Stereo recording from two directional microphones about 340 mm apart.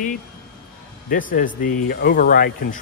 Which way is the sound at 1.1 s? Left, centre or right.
Left.